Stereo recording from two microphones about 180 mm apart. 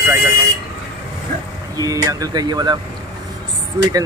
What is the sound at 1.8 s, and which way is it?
Speech, 20° right (ahead or behind).